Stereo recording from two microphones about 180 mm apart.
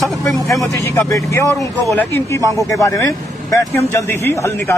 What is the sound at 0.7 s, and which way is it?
A man's voice, 15° left (ahead or behind).